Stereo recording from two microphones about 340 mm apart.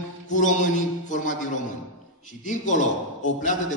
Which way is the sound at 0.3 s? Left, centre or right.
Left.